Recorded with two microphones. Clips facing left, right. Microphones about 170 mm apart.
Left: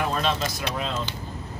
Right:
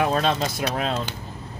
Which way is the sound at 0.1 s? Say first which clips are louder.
Right 3 dB; 65° right (ahead or behind).